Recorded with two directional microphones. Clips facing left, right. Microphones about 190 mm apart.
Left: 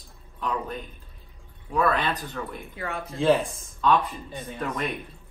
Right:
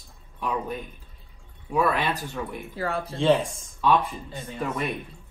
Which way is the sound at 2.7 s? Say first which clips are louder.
Right 6 dB; 35° right (ahead or behind).